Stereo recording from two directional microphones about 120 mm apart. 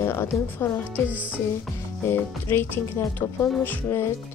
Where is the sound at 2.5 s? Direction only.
15° left (ahead or behind).